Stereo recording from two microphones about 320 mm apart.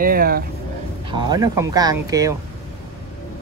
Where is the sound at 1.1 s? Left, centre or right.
Centre.